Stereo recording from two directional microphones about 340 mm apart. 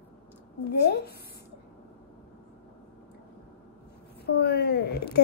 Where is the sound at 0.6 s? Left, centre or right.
Left.